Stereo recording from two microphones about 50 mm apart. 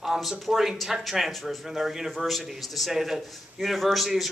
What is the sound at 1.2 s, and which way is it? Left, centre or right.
A man's voice, centre.